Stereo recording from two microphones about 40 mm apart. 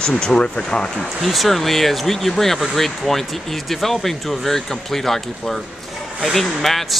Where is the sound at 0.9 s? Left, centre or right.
Centre.